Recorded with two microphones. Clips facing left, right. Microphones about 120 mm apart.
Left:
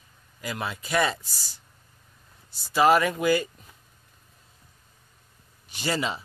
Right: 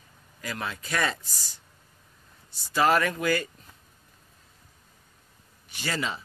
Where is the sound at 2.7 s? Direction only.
15° left (ahead or behind).